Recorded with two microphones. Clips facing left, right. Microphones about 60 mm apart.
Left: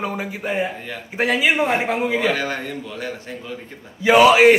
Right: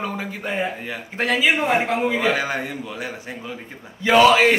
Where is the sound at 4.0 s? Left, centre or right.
Centre.